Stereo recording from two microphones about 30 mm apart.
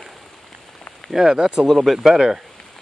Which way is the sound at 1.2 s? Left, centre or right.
Right.